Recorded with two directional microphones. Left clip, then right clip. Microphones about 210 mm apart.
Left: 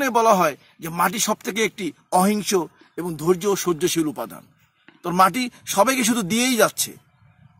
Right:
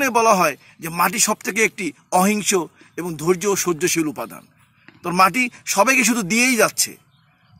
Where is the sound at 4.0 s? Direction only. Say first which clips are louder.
Right 1 dB; centre (ahead or behind).